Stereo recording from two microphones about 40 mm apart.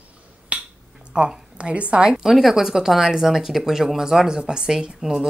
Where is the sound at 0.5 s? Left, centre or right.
Right.